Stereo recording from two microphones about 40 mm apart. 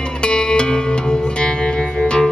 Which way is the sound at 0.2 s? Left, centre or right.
Left.